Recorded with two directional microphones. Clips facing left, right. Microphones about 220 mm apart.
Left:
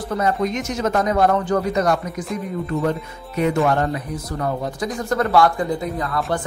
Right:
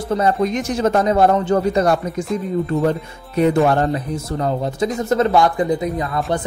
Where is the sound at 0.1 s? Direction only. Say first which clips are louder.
Right 3 dB; 30° right (ahead or behind).